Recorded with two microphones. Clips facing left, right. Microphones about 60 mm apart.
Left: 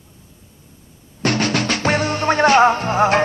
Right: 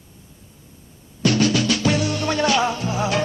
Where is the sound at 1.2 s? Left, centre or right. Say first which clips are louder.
Even; left.